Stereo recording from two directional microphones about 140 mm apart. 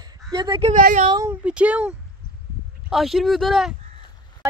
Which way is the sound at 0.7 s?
70° right (ahead or behind).